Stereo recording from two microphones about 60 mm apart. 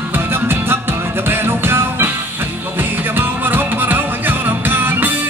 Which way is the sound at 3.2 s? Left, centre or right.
Right.